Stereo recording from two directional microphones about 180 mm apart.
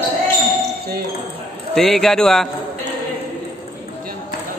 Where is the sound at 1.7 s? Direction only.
Centre (ahead or behind).